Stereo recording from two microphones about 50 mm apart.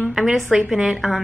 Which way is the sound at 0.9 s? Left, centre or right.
Centre.